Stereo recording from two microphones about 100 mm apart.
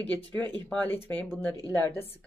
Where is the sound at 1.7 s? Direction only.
25° left (ahead or behind).